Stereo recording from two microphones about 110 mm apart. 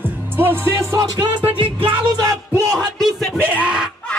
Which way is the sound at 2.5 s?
30° right (ahead or behind).